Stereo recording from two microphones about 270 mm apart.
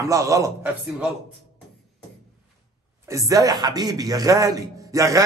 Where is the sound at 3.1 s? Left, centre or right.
Centre.